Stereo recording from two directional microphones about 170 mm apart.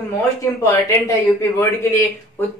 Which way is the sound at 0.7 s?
15° left (ahead or behind).